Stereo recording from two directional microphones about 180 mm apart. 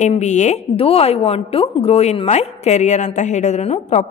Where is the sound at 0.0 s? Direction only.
40° left (ahead or behind).